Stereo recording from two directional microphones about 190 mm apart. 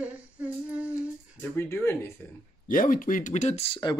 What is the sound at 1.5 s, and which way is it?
Speech, 15° left (ahead or behind).